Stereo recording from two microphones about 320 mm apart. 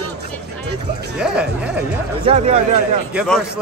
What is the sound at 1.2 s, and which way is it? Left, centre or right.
Speech, centre.